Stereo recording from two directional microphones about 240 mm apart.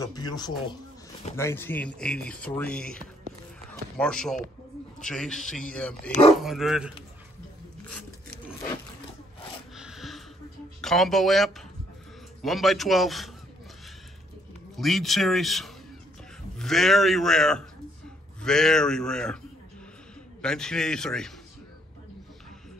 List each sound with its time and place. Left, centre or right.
0.0 s a man's voice: centre
4.0 s speech: centre
9.8 s a sound: centre
10.8 s speech: centre
14.8 s speech: centre
20.4 s speech: centre